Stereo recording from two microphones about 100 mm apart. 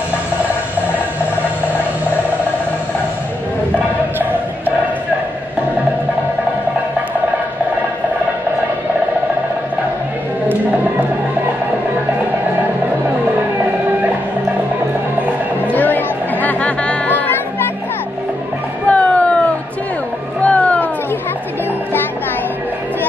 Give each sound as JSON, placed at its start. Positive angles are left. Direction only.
{"t": 15.7, "sound": "chatter", "side_deg": 20}
{"t": 18.9, "sound": "music", "side_deg": 15}
{"t": 20.4, "sound": "a sound", "side_deg": 15}